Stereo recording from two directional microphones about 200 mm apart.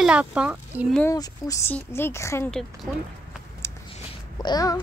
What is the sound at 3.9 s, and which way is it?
Babbling, 25° left (ahead or behind).